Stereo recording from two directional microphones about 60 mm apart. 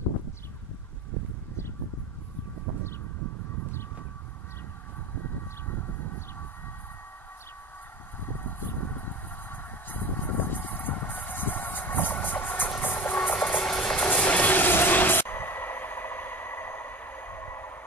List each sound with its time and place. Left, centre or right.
8.2 s vehicle: left
12.9 s music: left
13.7 s vehicle: centre
14.1 s train: left